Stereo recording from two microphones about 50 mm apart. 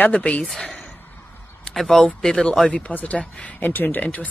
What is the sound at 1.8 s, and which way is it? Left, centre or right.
Speech, centre.